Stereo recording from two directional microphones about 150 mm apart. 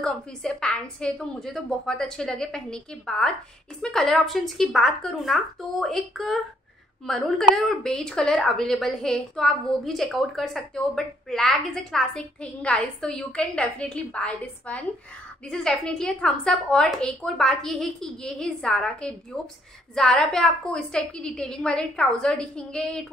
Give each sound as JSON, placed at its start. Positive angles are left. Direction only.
{"t": 0.0, "sound": "speech", "side_deg": 5}